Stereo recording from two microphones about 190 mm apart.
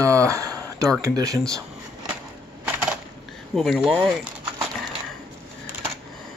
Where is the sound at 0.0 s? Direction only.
15° right (ahead or behind).